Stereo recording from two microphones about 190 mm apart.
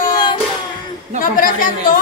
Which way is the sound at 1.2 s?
45° left (ahead or behind).